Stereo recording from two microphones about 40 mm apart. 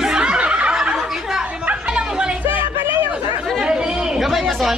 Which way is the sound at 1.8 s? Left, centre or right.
Right.